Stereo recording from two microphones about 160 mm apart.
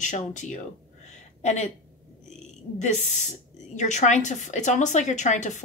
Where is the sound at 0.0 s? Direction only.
50° left (ahead or behind).